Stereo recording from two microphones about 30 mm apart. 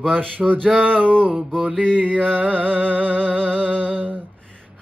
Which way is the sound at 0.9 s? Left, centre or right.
Right.